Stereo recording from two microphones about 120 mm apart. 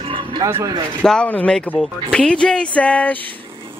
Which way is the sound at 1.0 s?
10° left (ahead or behind).